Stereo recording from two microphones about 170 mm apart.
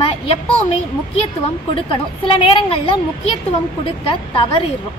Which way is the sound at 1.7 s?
30° left (ahead or behind).